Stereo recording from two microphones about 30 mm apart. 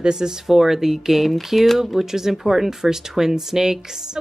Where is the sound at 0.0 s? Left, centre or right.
Right.